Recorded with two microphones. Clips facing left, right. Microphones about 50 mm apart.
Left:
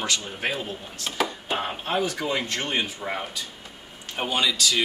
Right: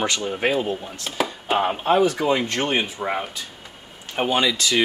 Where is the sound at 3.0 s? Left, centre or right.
Right.